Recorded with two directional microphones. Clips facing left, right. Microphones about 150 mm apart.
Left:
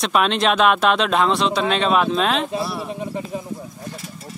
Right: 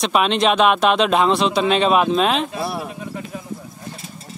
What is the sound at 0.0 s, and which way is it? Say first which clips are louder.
Speech: right 1 dB; centre (ahead or behind).